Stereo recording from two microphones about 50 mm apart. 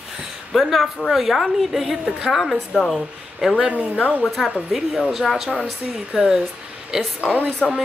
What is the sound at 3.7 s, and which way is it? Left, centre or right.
Speech, left.